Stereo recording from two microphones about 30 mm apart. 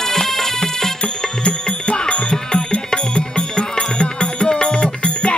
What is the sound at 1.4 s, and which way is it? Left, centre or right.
Music, left.